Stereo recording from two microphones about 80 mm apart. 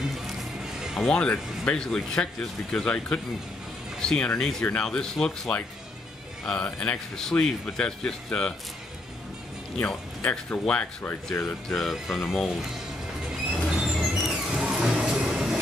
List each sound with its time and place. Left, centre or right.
0.3 s music: centre
1.0 s a man's voice: centre
9.8 s a man's voice: centre
11.7 s speech: centre
13.3 s train: centre